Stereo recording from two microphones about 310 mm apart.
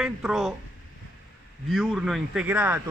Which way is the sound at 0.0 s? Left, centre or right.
Centre.